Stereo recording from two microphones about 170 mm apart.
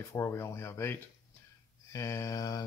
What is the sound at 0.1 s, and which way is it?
Speech, 15° left (ahead or behind).